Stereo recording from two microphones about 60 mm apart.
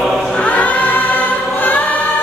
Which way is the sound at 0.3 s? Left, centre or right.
Left.